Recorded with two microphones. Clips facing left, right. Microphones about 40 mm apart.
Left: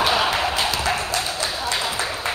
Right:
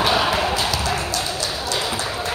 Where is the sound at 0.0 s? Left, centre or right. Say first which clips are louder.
Right 1 dB; centre.